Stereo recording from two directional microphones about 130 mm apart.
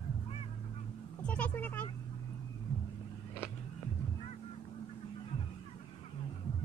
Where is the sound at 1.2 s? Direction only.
10° left (ahead or behind).